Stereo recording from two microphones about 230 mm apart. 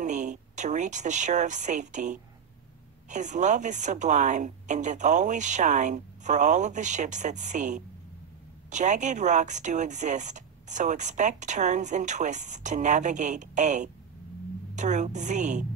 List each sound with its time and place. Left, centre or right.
0.0 s speech: right